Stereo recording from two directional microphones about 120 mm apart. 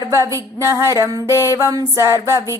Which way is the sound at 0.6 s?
25° right (ahead or behind).